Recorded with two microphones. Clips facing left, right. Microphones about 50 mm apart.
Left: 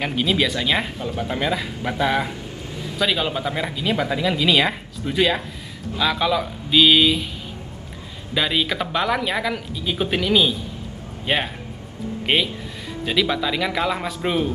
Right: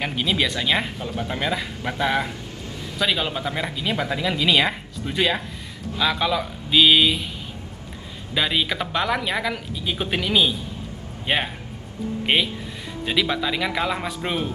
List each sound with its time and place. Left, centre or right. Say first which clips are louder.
0.0 s speech: left 2 dB; centre
8.4 s speech: left 1 dB; centre